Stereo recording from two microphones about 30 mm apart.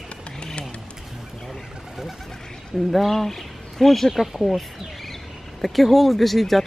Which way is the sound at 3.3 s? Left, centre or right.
Centre.